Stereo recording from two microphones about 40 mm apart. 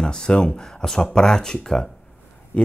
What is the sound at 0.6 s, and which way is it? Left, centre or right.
Speech, centre.